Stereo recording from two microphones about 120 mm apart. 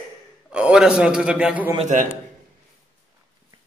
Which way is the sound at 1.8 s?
80° right.